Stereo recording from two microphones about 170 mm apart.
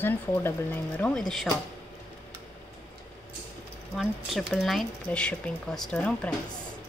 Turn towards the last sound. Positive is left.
turn(degrees=5)  # may be behind; listen again after turning